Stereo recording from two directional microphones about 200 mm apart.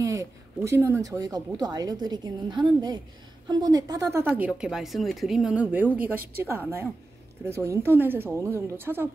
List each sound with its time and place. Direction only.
0.0 s a woman's voice: 15° right (ahead or behind)